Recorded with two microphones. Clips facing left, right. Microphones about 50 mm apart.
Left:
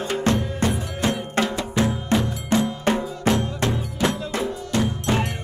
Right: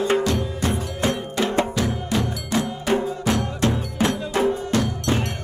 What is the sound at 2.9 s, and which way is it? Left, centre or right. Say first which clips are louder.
Music: even; left.